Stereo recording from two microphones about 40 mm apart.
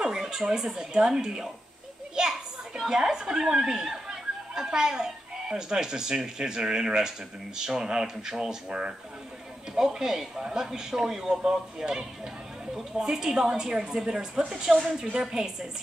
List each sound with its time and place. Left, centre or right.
0.0 s speech: centre
2.1 s children playing: centre
2.9 s speech: centre
9.8 s speech: centre